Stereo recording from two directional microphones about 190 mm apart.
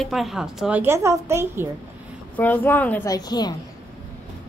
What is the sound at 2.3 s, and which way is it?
A woman's voice, 10° left (ahead or behind).